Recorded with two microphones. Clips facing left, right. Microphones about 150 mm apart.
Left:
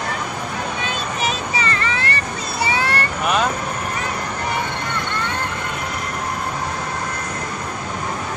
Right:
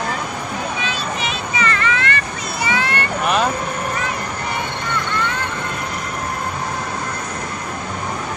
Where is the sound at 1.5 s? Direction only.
30° left (ahead or behind).